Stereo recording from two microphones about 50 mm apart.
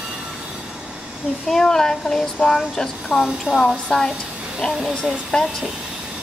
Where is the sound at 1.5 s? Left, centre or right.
Centre.